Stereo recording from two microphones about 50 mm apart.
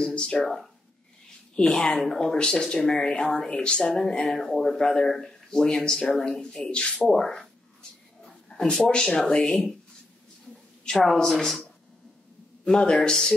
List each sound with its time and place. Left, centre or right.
0.0 s speech: centre
1.6 s speech: centre
8.5 s speech: centre
10.9 s speech: centre
12.6 s a man's voice: centre